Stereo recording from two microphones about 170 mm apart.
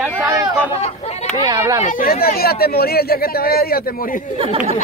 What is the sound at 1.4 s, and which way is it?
Speech, 20° right (ahead or behind).